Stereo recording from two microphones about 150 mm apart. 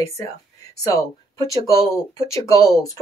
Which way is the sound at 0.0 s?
20° left (ahead or behind).